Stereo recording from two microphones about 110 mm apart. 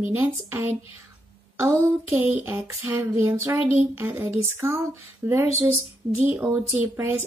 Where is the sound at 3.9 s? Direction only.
15° right (ahead or behind).